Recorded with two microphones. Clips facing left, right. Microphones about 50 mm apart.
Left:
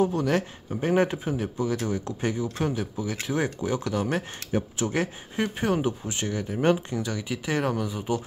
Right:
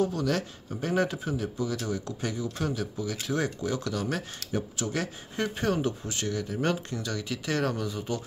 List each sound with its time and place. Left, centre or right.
0.0 s speech: left